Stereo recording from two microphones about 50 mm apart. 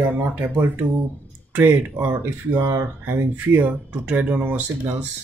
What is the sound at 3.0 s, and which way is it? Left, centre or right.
Speech, right.